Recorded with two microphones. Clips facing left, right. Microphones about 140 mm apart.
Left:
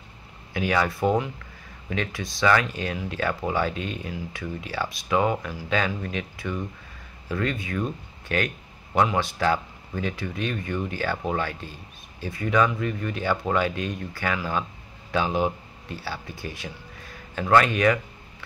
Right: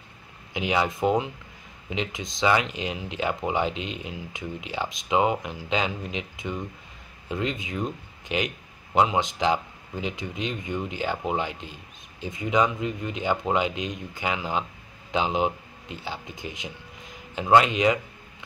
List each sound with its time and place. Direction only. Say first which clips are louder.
0.5 s speech: left 1 dB; 20° right (ahead or behind)